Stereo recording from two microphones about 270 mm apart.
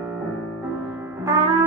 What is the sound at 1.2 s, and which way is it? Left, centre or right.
Music, centre.